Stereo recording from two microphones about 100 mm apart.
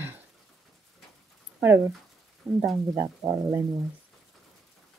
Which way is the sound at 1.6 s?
20° right (ahead or behind).